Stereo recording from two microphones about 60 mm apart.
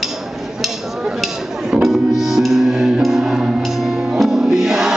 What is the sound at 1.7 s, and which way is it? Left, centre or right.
Music, centre.